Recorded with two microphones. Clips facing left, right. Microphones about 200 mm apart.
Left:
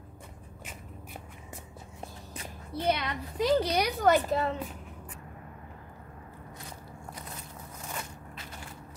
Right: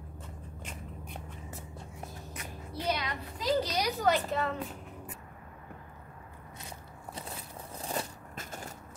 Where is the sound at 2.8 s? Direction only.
60° left (ahead or behind).